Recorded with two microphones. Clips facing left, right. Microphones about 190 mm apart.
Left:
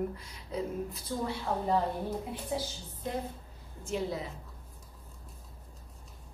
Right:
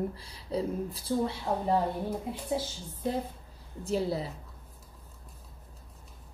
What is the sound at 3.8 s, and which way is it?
Speech, 35° right (ahead or behind).